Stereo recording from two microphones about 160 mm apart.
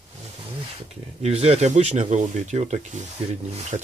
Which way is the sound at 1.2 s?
40° right (ahead or behind).